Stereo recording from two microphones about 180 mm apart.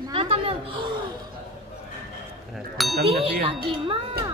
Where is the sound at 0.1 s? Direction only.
30° right (ahead or behind).